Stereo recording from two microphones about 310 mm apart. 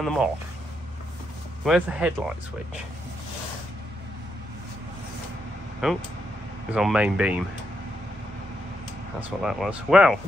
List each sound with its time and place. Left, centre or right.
0.0 s speech: centre
1.6 s speech: centre
5.8 s speech: centre
9.4 s speech: centre